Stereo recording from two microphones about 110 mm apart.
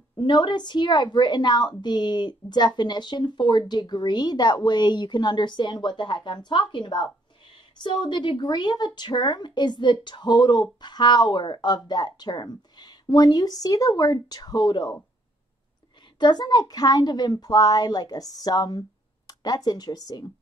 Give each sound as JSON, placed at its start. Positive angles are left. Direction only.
{"t": 0.2, "sound": "a woman's voice", "side_deg": 45}
{"t": 16.2, "sound": "speech", "side_deg": 40}